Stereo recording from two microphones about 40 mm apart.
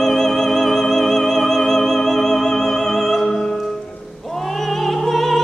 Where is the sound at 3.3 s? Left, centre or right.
Left.